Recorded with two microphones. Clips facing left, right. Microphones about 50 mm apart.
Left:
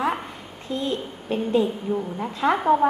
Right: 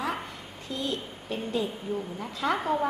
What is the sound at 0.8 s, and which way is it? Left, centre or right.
A woman's voice, left.